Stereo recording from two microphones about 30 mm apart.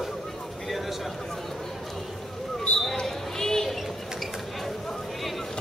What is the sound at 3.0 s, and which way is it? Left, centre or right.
Basketball bounce, centre.